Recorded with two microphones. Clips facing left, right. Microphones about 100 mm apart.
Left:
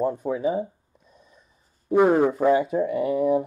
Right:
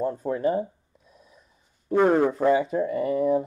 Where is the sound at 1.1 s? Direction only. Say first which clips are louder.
Even; 5° right (ahead or behind).